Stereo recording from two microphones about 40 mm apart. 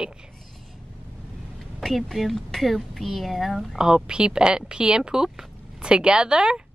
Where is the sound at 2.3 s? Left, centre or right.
Centre.